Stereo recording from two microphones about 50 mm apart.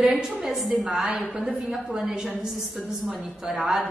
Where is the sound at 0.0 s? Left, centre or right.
Centre.